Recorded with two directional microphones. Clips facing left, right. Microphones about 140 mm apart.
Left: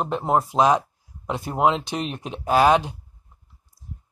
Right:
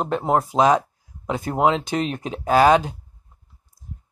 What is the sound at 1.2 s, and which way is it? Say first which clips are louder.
Speech: right 3 dB; centre (ahead or behind).